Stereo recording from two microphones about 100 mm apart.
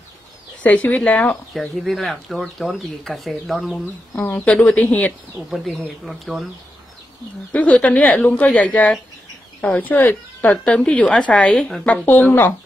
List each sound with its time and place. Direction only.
0.7 s a woman's voice: 15° left (ahead or behind)
1.5 s speech: centre (ahead or behind)
4.1 s a woman's voice: 20° left (ahead or behind)
5.5 s speech: centre (ahead or behind)
7.5 s a woman's voice: 15° left (ahead or behind)